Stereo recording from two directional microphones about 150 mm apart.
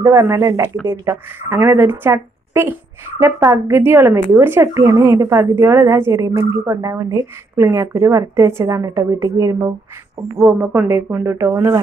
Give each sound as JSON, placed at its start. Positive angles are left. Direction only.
{"t": 0.0, "sound": "a woman's voice", "side_deg": -20}